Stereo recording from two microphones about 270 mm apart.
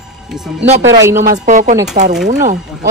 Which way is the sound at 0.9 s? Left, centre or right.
Centre.